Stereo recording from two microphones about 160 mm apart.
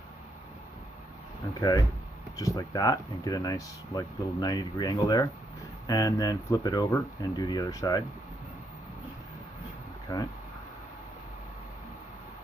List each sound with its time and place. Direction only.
1.6 s speech: 25° left (ahead or behind)
10.1 s speech: 25° left (ahead or behind)